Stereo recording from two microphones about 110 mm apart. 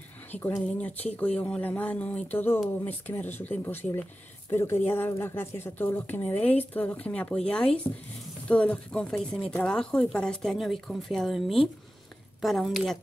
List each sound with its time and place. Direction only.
0.3 s speech: 20° left (ahead or behind); by 13.0 s centre (ahead or behind)